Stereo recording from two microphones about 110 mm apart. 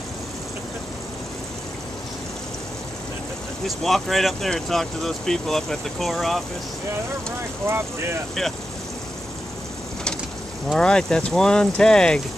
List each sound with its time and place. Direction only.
3.6 s speech: centre (ahead or behind)
7.6 s speech: 25° right (ahead or behind)
10.7 s speech: 5° left (ahead or behind)